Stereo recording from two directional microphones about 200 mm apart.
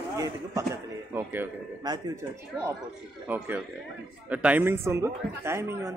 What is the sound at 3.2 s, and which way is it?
A man's voice, 10° right (ahead or behind).